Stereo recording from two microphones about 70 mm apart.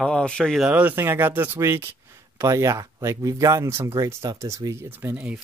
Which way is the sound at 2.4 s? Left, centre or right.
Right.